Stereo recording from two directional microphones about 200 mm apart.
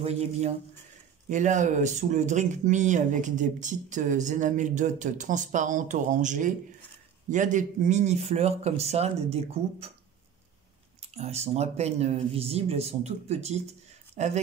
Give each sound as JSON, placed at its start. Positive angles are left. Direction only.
{"t": 1.3, "sound": "speech", "side_deg": -40}
{"t": 11.0, "sound": "speech", "side_deg": -30}